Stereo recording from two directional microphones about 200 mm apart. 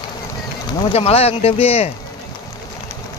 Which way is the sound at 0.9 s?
30° left (ahead or behind).